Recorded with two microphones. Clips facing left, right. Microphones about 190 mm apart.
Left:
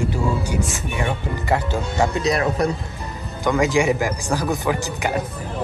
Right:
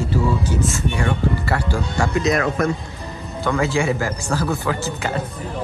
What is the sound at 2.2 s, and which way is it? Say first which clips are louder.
Speech: right 4 dB; 35° left (ahead or behind).